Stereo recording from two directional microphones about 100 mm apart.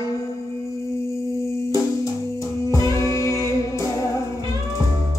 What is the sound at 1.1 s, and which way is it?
Music, 30° left (ahead or behind).